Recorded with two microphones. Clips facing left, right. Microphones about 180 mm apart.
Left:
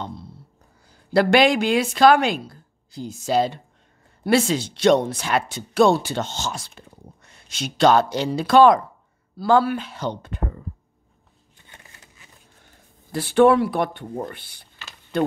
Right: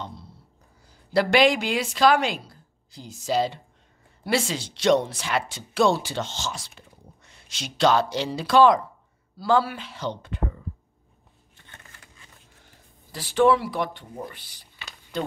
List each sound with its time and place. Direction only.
1.1 s speech: 55° left (ahead or behind)
11.6 s a sound: 15° left (ahead or behind)
13.1 s speech: 55° left (ahead or behind)